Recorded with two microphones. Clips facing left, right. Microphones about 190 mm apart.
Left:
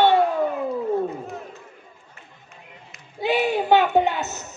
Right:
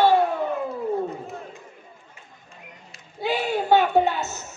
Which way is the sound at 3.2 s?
20° left (ahead or behind).